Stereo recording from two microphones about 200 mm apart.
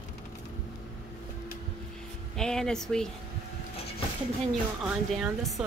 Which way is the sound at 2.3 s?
5° left (ahead or behind).